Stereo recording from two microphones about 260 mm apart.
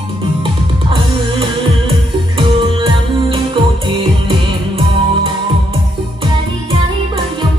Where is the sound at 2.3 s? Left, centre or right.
Centre.